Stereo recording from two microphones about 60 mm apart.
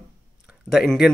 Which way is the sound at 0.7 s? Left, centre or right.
Left.